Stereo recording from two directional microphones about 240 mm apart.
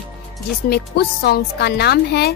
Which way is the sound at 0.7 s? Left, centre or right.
Left.